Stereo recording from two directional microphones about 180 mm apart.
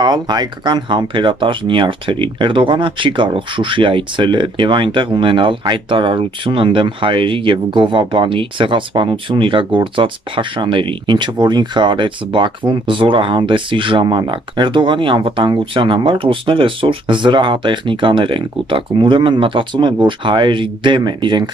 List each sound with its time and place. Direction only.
0.0 s speech: 25° right (ahead or behind)